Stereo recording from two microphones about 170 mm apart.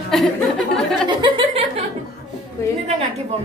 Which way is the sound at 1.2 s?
35° right (ahead or behind).